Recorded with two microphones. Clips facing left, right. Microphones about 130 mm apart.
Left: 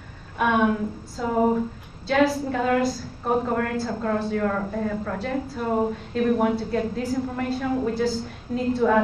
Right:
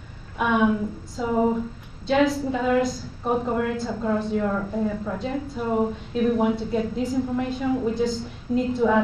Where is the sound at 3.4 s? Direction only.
15° right (ahead or behind).